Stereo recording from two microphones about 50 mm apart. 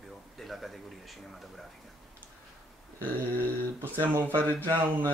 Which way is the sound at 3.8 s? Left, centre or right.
Right.